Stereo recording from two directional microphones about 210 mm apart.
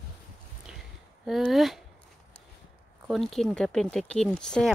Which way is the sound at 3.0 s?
Centre (ahead or behind).